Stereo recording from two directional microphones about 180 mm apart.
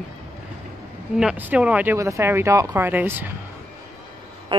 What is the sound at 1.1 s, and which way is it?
Speech, 5° right (ahead or behind).